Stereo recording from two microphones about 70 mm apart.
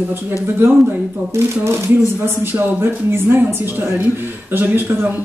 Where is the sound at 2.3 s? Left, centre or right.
Right.